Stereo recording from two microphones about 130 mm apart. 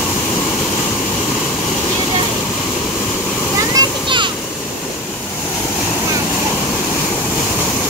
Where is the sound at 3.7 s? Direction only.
40° right (ahead or behind).